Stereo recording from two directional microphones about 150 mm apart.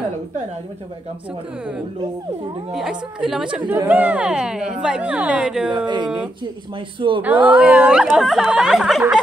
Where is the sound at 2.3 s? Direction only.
35° right (ahead or behind).